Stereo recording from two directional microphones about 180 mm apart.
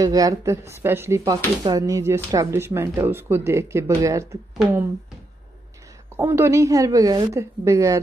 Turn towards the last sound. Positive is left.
turn(degrees=-15)  # may be behind; listen again after turning